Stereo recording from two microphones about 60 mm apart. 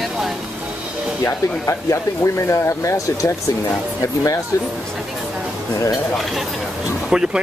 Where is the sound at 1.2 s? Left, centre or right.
Left.